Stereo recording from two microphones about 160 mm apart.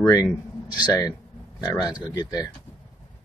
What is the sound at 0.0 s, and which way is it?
Speech, 20° left (ahead or behind).